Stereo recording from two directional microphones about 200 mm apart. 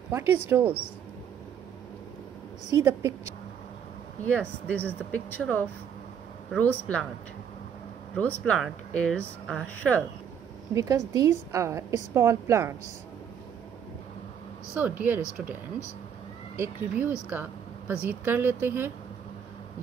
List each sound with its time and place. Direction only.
0.5 s a woman's voice: 10° right (ahead or behind)
2.8 s a woman's voice: 10° right (ahead or behind)
4.2 s speech: 10° left (ahead or behind)
8.2 s speech: 5° left (ahead or behind)
10.7 s a woman's voice: 15° right (ahead or behind)
14.8 s a woman's voice: 10° right (ahead or behind)
16.5 s a woman's voice: 10° right (ahead or behind)
17.3 s a sound: 10° right (ahead or behind)
18.0 s a woman's voice: 10° right (ahead or behind)